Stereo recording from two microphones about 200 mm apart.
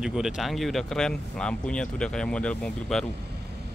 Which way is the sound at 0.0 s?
Centre (ahead or behind).